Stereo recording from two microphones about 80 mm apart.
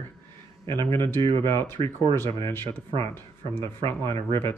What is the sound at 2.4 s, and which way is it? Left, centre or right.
A man's voice, left.